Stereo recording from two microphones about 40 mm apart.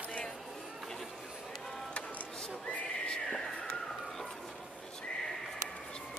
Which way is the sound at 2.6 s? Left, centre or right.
Left.